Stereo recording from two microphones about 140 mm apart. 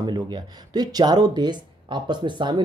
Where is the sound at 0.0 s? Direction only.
30° right (ahead or behind).